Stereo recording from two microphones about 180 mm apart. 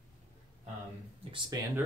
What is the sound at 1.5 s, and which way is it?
Speech, 20° right (ahead or behind).